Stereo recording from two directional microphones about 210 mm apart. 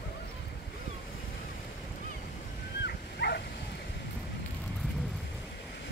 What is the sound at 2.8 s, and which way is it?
Dog, 50° left (ahead or behind).